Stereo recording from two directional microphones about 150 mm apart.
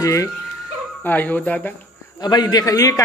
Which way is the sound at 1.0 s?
10° left (ahead or behind).